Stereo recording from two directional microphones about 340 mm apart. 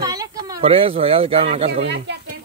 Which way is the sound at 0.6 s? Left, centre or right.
Centre.